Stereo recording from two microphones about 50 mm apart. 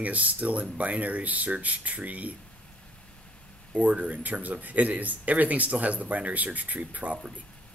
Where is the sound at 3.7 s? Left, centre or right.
Right.